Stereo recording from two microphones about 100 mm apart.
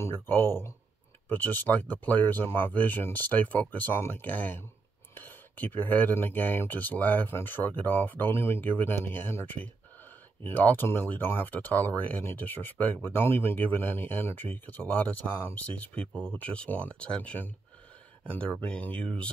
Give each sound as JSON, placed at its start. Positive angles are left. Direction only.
{"t": 0.0, "sound": "speech", "side_deg": 20}